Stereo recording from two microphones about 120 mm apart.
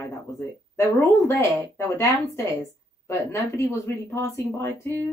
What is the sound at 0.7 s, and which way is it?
Speech, 20° left (ahead or behind).